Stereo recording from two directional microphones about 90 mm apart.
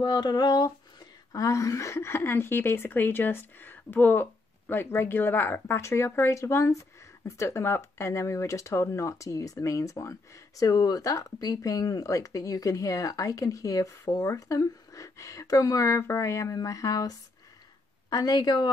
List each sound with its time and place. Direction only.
0.0 s speech: 50° left (ahead or behind)
18.1 s speech: 45° left (ahead or behind)